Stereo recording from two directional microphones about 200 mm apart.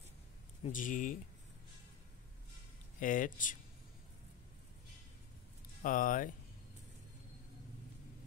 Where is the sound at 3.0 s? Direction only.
40° left (ahead or behind).